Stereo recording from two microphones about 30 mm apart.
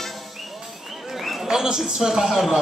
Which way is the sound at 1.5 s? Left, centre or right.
Right.